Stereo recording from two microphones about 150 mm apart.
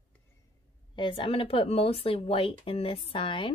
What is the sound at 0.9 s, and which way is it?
Speech, 35° left (ahead or behind).